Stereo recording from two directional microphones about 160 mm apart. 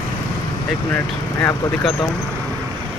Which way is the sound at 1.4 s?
20° left (ahead or behind).